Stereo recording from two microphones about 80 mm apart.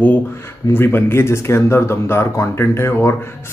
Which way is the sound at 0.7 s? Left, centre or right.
Left.